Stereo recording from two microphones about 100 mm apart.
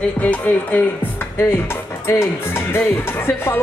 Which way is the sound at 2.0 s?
25° left (ahead or behind).